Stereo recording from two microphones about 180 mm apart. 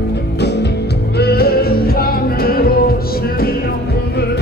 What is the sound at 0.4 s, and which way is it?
Music, 70° left (ahead or behind).